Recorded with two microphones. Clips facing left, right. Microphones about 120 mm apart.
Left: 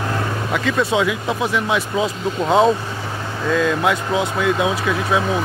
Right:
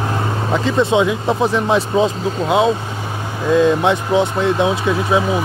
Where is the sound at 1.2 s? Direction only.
35° right (ahead or behind).